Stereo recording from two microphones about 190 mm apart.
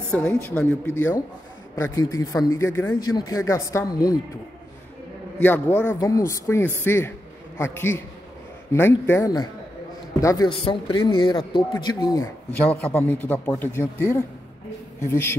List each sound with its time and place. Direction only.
0.3 s a woman's voice: 10° left (ahead or behind)
5.4 s a woman's voice: 10° left (ahead or behind)
12.9 s a woman's voice: 10° left (ahead or behind)